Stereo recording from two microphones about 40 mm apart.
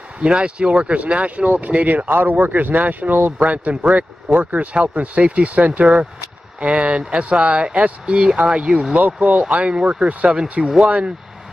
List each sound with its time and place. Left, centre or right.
0.2 s speech: right
2.0 s a man's voice: right
3.4 s speech: right
9.4 s speech: right
10.6 s speech: centre